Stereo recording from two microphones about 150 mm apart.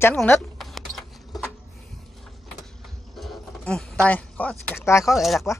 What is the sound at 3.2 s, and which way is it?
Speech, centre (ahead or behind).